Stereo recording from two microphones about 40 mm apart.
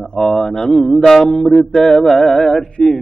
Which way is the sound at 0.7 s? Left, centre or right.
Centre.